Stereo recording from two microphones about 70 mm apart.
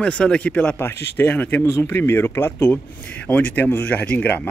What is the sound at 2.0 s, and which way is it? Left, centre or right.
Speech, left.